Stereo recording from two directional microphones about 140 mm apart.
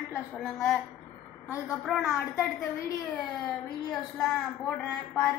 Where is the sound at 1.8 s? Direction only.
Centre (ahead or behind).